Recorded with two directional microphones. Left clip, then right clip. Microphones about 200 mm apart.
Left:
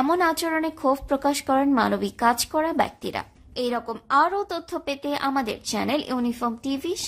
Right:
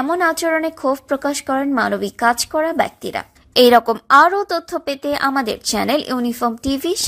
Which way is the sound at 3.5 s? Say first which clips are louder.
Right 16 dB; 40° right (ahead or behind).